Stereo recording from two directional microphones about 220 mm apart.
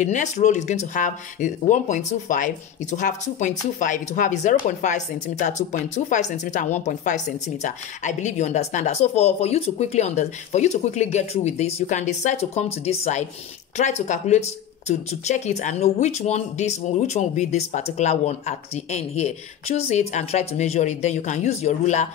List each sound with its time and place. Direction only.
0.0 s speech: 35° left (ahead or behind)